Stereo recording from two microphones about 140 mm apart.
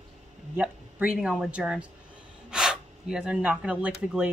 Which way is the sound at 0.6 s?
10° right (ahead or behind).